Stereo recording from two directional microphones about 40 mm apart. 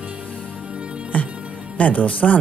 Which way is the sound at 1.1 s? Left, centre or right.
Left.